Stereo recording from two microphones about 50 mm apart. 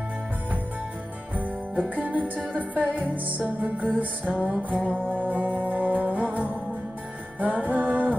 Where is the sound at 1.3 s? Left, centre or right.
Right.